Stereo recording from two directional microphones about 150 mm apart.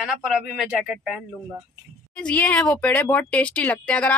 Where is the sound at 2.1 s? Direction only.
10° left (ahead or behind).